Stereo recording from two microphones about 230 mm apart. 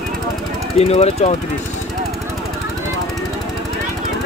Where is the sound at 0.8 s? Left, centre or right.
Left.